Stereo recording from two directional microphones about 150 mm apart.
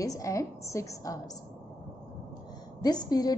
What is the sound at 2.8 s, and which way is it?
Speech, 25° left (ahead or behind).